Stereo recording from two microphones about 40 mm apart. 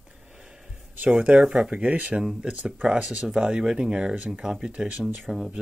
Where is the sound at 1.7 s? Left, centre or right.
Right.